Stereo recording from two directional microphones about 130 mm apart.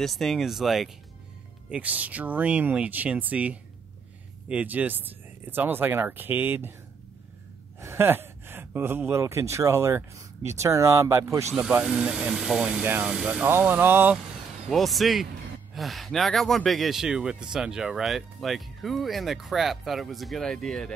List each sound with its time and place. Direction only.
0.0 s speech: centre (ahead or behind); by 6.7 s 15° right (ahead or behind)
7.8 s speech: 20° right (ahead or behind)
11.5 s speech: 5° right (ahead or behind)
14.7 s speech: centre (ahead or behind)